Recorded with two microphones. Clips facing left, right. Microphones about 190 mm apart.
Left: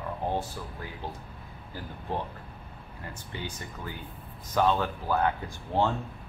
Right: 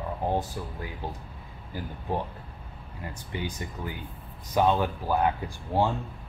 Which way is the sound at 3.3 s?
15° right (ahead or behind).